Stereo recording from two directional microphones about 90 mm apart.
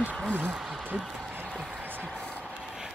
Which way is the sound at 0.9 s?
Centre (ahead or behind).